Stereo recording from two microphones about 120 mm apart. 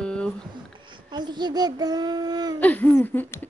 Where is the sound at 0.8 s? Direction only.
40° right (ahead or behind).